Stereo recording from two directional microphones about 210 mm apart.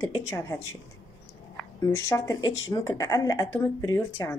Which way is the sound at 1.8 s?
10° left (ahead or behind).